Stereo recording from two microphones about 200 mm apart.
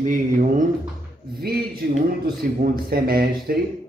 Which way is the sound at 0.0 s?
40° right (ahead or behind).